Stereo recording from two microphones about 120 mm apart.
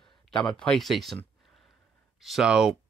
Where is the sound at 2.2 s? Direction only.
Centre (ahead or behind).